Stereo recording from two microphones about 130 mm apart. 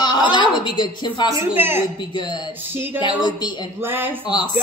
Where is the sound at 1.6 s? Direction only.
15° right (ahead or behind).